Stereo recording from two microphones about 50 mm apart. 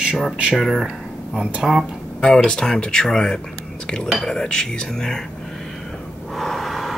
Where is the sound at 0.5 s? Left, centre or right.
Centre.